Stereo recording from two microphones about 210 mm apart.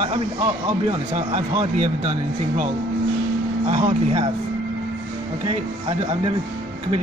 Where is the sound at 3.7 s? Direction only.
25° right (ahead or behind).